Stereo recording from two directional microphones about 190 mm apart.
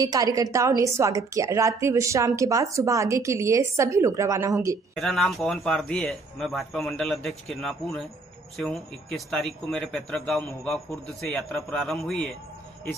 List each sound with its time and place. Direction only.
0.0 s a woman's voice: 20° right (ahead or behind)
4.9 s speech: centre (ahead or behind)